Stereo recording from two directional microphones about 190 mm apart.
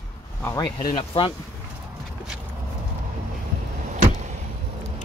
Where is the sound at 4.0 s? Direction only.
40° right (ahead or behind).